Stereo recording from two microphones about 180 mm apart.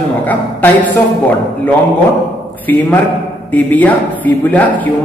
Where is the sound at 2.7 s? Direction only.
10° left (ahead or behind).